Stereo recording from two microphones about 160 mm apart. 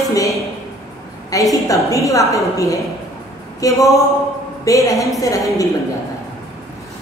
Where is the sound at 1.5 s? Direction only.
20° left (ahead or behind).